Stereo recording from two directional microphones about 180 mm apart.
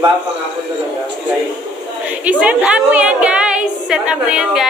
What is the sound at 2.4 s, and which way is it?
A woman's voice, 5° right (ahead or behind).